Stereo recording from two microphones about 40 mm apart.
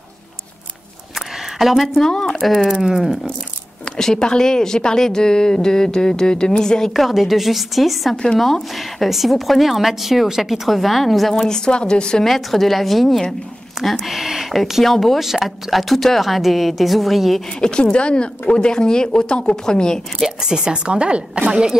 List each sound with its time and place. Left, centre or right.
1.6 s a woman's voice: centre
2.0 s speech: centre
2.8 s a woman's voice: centre
3.9 s speech: centre
6.9 s a woman's voice: centre
11.3 s speech: centre
12.3 s a woman's voice: centre
14.9 s speech: centre
15.1 s a woman's voice: centre
17.6 s speech: left
20.3 s a woman's voice: centre